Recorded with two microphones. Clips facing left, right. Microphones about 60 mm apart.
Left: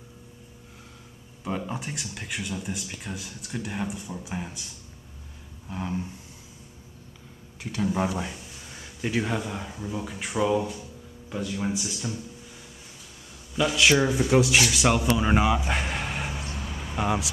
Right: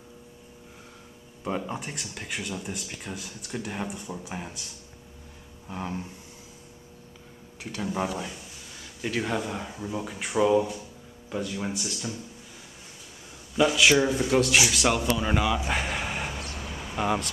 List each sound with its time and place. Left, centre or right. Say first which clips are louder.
1.4 s speech: even; centre
5.7 s speech: left 2 dB; centre
7.6 s speech: left 3 dB; centre
8.2 s a sound: left 2 dB; centre
9.0 s speech: left 1 dB; centre
13.6 s speech: right 1 dB; centre
13.9 s speech: left 1 dB; centre
15.0 s speech: left 3 dB; centre
15.7 s a sound: even; centre